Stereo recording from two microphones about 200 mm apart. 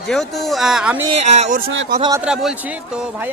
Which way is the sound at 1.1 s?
35° right (ahead or behind).